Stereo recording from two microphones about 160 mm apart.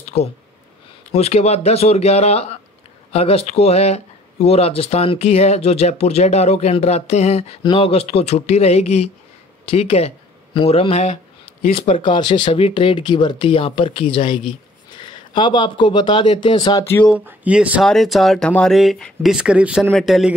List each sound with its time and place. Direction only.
0.1 s speech: 45° left (ahead or behind)
16.8 s speech: 15° left (ahead or behind)
17.1 s speech: 10° right (ahead or behind)